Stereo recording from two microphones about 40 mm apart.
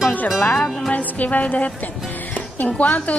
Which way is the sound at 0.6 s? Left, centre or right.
Centre.